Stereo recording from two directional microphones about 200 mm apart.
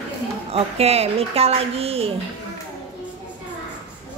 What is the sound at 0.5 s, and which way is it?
A woman's voice, 30° right (ahead or behind).